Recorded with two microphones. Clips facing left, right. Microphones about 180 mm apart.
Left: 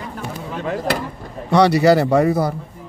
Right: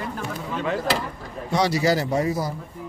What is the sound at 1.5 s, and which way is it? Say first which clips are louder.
A man's voice: left 8 dB; 65° left (ahead or behind).